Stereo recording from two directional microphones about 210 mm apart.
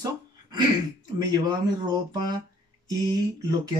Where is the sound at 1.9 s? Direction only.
20° right (ahead or behind).